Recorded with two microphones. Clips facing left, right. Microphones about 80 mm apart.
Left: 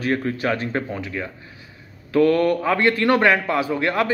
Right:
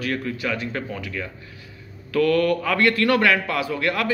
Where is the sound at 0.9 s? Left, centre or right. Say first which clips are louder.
Left 2 dB; left.